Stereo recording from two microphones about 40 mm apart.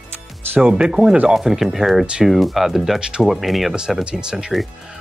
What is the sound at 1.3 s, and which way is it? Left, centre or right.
Speech, centre.